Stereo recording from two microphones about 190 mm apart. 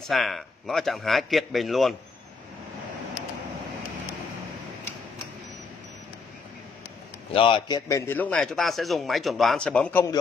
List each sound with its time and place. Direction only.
0.0 s a man's voice: centre (ahead or behind)
7.3 s a man's voice: 25° left (ahead or behind); by 10.1 s 10° left (ahead or behind)